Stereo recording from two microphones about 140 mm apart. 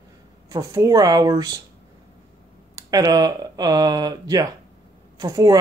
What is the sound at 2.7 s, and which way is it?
Speech, 25° right (ahead or behind).